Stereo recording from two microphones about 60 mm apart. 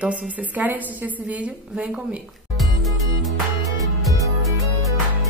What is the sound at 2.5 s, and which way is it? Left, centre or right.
Music, centre.